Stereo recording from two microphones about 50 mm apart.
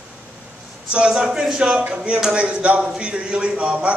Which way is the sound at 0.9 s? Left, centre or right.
Centre.